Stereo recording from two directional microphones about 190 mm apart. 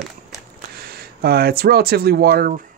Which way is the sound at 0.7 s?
55° right (ahead or behind).